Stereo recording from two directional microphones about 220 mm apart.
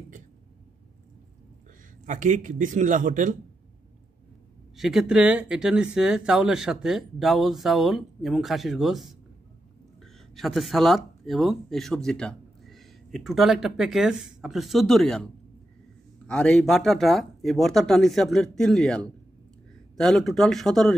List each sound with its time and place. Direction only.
2.0 s speech: 35° right (ahead or behind)
4.7 s speech: centre (ahead or behind)
10.1 s speech: centre (ahead or behind)
16.3 s a man's voice: 5° left (ahead or behind)